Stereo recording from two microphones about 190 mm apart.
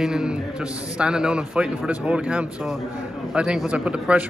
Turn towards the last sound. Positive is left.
turn(degrees=-5)  # may be behind; listen again after turning